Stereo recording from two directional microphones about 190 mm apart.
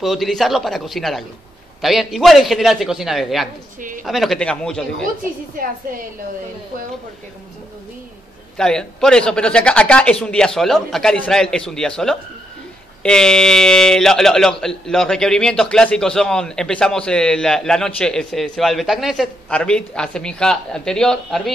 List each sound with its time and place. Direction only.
0.0 s speech: centre (ahead or behind)
5.6 s a woman's voice: 50° right (ahead or behind)
8.5 s speech: 5° left (ahead or behind)